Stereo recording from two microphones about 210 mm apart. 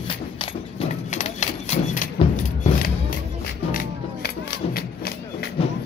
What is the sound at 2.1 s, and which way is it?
Keys jangling, 35° left (ahead or behind).